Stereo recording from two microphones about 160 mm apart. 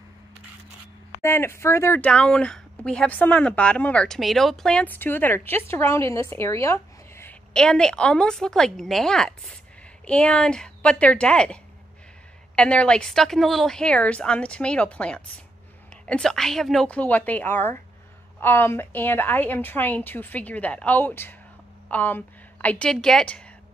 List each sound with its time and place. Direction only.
1.2 s speech: 15° left (ahead or behind)
7.5 s a woman's voice: 5° left (ahead or behind)